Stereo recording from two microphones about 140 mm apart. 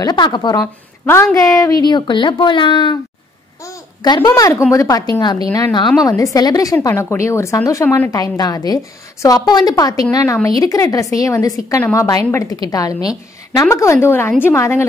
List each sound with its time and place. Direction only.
0.0 s a woman's voice: 30° left (ahead or behind)
3.6 s a sound: 30° left (ahead or behind)
4.3 s a woman's voice: 20° left (ahead or behind)
8.1 s a woman's voice: 25° left (ahead or behind)